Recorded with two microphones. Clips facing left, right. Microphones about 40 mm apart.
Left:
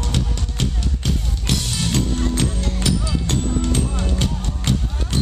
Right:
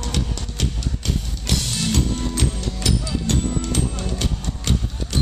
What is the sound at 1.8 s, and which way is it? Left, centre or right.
Music, left.